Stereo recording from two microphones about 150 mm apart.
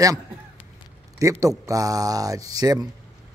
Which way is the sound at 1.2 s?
20° right (ahead or behind).